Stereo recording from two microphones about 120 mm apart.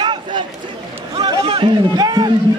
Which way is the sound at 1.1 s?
35° right (ahead or behind).